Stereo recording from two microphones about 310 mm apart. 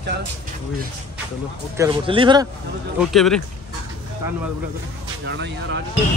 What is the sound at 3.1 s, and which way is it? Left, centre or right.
Speech, centre.